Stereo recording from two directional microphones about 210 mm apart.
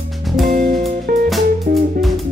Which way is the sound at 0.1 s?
Centre (ahead or behind).